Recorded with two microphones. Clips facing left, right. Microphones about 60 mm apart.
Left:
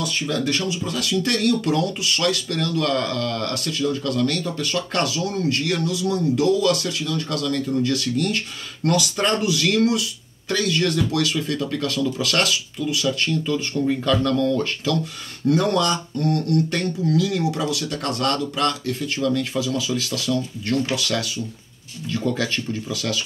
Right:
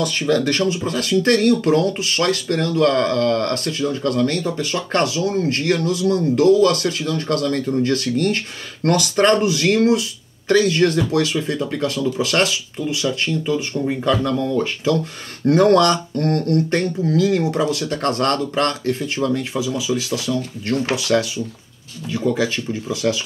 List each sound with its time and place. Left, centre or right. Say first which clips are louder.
0.0 s speech: right 5 dB; right
15.4 s speech: right 6 dB; right
16.5 s speech: right 3 dB; right